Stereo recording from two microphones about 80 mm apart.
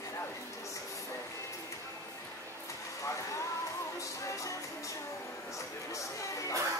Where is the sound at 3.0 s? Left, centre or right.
Left.